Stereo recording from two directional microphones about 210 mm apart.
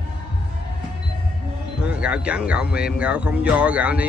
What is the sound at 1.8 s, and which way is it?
Speech, 5° right (ahead or behind).